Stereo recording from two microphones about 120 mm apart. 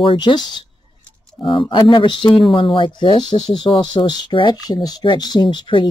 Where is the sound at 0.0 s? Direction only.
45° left (ahead or behind).